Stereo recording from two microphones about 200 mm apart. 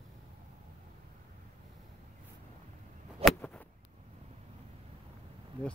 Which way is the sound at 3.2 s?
5° left (ahead or behind).